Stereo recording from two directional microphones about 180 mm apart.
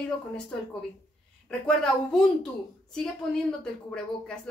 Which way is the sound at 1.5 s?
5° left (ahead or behind).